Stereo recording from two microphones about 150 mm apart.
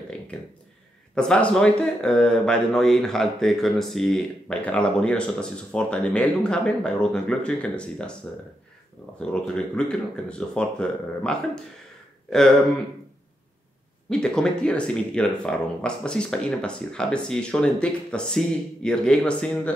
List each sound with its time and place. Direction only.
0.3 s speech: 5° left (ahead or behind)
9.2 s speech: 5° left (ahead or behind)
14.0 s speech: 5° left (ahead or behind)